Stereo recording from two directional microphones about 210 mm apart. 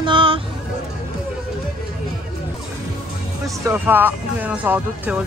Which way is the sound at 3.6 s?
10° right (ahead or behind).